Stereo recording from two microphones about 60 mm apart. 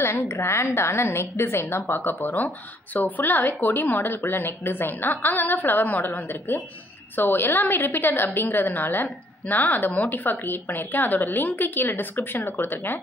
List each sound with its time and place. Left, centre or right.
0.0 s a woman's voice: left